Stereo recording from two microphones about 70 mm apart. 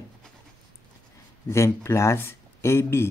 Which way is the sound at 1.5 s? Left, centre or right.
Left.